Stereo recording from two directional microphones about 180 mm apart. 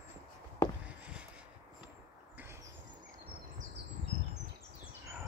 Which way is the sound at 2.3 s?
15° right (ahead or behind).